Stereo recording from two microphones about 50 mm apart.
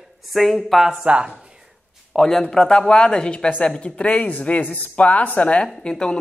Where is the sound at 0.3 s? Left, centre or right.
Centre.